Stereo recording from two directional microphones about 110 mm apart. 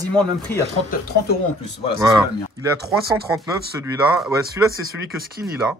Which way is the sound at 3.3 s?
30° right (ahead or behind).